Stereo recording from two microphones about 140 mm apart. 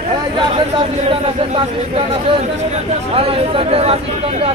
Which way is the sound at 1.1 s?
45° right (ahead or behind).